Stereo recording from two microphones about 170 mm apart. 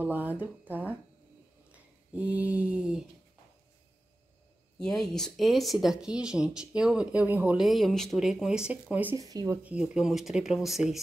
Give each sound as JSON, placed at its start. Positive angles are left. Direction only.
{"t": 0.0, "sound": "speech", "side_deg": -10}
{"t": 1.7, "sound": "a sound", "side_deg": -10}
{"t": 4.7, "sound": "speech", "side_deg": 5}
{"t": 9.1, "sound": "speech", "side_deg": -20}
{"t": 9.6, "sound": "speech", "side_deg": -5}